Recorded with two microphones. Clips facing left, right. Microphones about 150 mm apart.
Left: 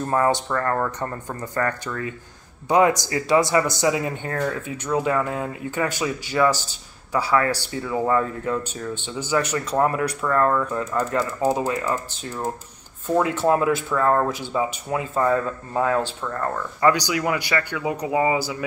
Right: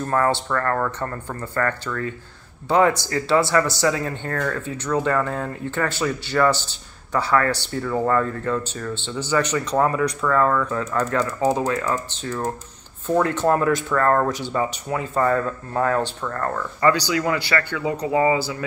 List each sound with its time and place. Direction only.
0.0 s speech: 20° left (ahead or behind)